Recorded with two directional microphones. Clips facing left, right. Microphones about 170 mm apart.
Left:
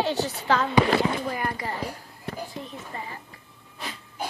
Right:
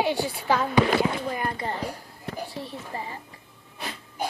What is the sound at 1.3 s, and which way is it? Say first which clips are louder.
Speech: right 1 dB; 25° right (ahead or behind).